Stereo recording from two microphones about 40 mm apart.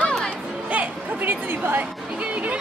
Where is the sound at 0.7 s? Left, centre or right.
Right.